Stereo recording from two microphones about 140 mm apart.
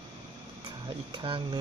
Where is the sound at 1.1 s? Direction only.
35° right (ahead or behind).